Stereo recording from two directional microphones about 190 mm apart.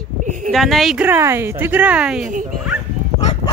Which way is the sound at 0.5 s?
Centre (ahead or behind).